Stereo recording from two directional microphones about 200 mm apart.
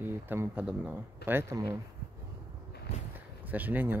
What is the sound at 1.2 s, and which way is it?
Speech, 55° left (ahead or behind).